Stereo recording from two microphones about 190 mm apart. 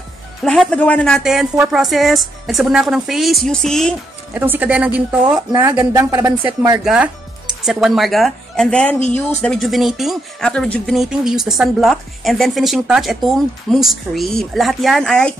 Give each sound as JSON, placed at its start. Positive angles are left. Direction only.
{"t": 0.4, "sound": "speech", "side_deg": 5}
{"t": 4.3, "sound": "speech", "side_deg": -10}
{"t": 6.8, "sound": "speech", "side_deg": -5}